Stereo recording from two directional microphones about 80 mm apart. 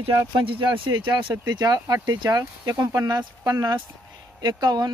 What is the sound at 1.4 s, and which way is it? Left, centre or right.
Speech, right.